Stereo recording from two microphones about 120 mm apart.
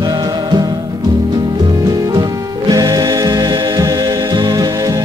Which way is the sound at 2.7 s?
30° right (ahead or behind).